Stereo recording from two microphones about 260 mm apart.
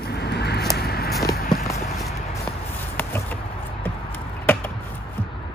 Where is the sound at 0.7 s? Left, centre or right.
Left.